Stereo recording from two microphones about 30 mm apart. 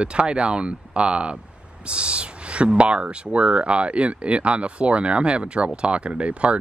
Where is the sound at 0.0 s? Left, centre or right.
Right.